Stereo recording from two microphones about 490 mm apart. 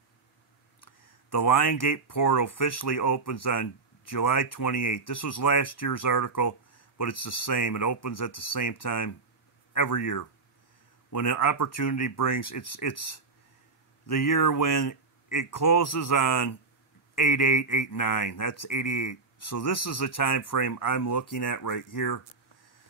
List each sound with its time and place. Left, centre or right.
0.8 s speech: left